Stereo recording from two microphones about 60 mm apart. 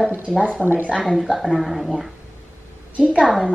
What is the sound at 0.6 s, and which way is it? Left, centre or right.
Speech, centre.